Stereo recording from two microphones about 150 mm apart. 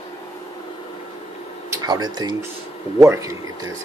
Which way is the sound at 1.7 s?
25° right (ahead or behind).